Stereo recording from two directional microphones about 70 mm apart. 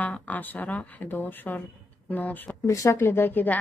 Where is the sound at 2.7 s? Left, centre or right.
Left.